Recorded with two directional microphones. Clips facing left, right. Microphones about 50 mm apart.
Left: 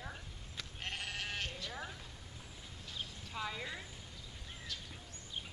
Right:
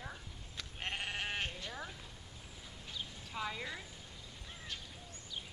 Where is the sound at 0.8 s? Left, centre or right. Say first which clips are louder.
Right 3 dB; right.